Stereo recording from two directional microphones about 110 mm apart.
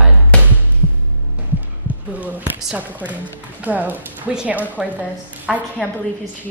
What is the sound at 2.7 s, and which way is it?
Speech, 15° right (ahead or behind).